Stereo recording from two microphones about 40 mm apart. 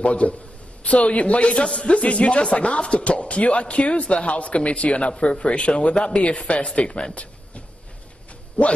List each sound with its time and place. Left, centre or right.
0.0 s speech: left
6.2 s speech: left